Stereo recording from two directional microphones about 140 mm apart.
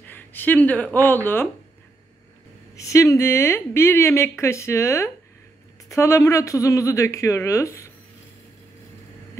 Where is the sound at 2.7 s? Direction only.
20° left (ahead or behind).